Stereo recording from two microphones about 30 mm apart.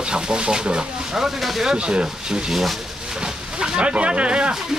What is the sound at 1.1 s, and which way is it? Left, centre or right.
Speech, centre.